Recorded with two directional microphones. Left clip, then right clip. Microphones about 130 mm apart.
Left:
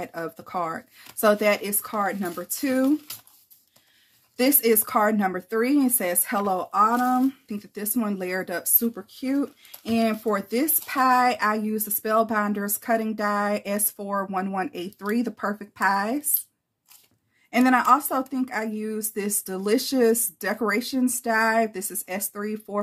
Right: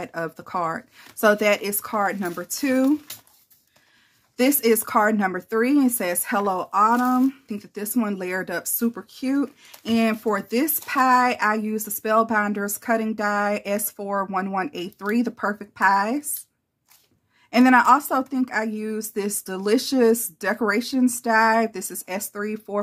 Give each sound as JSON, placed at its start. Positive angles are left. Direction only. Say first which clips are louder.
{"t": 0.0, "sound": "a woman's voice", "louder": "right 3 dB", "side_deg": -35}
{"t": 4.4, "sound": "a woman's voice", "louder": "right 2 dB", "side_deg": -30}
{"t": 17.5, "sound": "a woman's voice", "louder": "right 3 dB", "side_deg": -40}